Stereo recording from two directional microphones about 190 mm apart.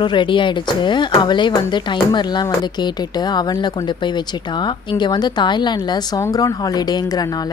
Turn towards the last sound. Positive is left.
turn(degrees=20)  # may be behind; listen again after turning